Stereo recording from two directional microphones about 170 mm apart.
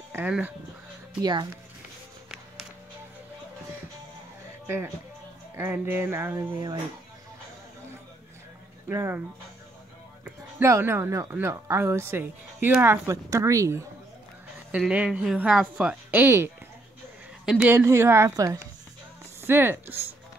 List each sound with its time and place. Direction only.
0.1 s speech: 10° right (ahead or behind)
1.2 s speech: 25° right (ahead or behind)
4.6 s speech: 15° right (ahead or behind)
8.8 s speech: 15° right (ahead or behind)
10.2 s speech: 15° right (ahead or behind)
17.5 s speech: 10° right (ahead or behind)